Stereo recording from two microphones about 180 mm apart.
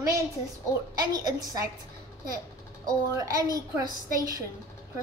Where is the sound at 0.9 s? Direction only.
20° right (ahead or behind).